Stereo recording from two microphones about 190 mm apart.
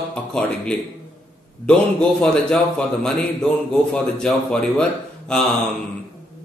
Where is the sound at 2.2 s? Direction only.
5° left (ahead or behind).